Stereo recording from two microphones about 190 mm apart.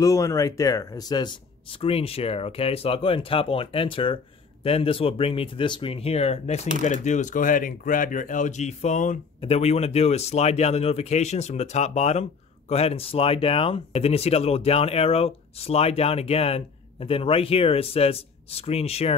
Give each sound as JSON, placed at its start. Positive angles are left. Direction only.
{"t": 0.0, "sound": "speech", "side_deg": 15}